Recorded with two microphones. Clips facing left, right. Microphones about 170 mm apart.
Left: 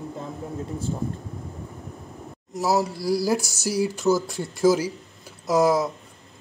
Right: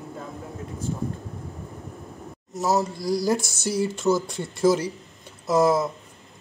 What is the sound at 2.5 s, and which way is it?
A man's voice, 10° left (ahead or behind).